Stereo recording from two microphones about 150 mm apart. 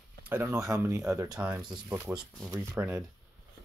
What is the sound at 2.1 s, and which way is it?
Speech, 25° right (ahead or behind).